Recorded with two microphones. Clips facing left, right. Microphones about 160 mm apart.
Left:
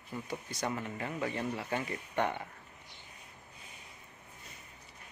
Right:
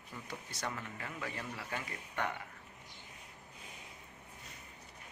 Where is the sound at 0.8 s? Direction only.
25° left (ahead or behind).